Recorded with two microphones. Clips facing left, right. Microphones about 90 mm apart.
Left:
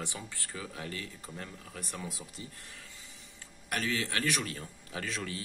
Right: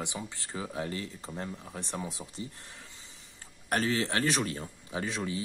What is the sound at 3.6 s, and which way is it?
Speech, 35° right (ahead or behind).